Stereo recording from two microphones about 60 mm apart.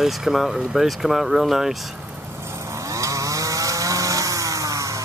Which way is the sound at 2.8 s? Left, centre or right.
Right.